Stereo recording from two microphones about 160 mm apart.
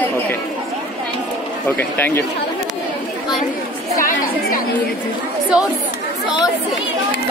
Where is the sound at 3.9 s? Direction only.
60° left (ahead or behind).